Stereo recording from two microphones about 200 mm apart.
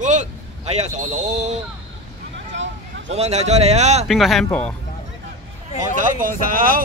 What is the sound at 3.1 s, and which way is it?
Speech, 35° right (ahead or behind).